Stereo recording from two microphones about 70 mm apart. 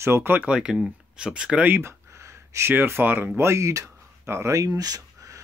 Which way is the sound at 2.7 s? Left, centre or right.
Right.